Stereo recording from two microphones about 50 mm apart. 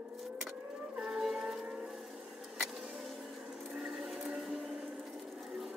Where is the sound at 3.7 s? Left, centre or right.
Centre.